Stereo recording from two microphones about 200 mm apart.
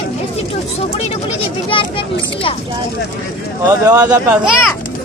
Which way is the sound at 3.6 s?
20° right (ahead or behind).